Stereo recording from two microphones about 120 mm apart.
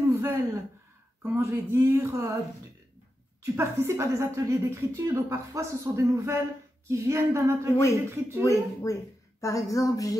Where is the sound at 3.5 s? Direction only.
20° right (ahead or behind).